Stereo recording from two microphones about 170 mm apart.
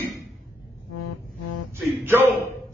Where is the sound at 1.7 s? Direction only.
15° right (ahead or behind).